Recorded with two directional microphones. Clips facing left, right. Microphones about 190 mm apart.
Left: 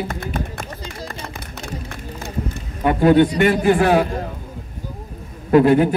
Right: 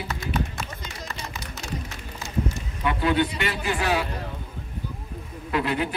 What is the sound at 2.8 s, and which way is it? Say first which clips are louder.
A man's voice: left 10 dB; 45° left (ahead or behind).